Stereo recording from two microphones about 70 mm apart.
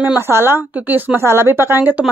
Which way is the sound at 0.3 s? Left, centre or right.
Right.